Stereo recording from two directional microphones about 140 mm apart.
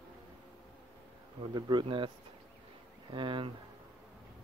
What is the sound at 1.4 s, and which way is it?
Speech, 35° right (ahead or behind).